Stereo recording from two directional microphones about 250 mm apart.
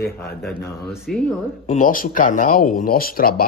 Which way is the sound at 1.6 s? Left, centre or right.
Left.